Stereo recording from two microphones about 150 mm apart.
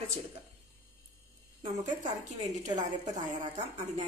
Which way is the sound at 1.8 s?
55° right (ahead or behind).